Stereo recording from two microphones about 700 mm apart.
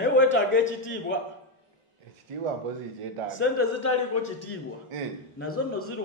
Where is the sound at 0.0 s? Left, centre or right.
Centre.